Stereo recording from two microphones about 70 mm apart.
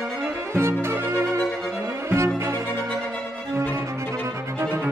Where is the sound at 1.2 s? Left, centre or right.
Left.